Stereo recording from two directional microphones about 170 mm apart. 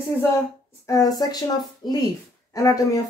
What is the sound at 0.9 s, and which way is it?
Speech, 20° left (ahead or behind).